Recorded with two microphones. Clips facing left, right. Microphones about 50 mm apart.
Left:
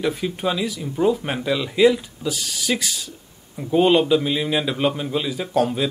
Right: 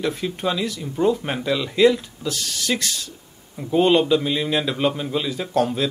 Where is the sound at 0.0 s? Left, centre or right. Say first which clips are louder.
Left 1 dB; centre.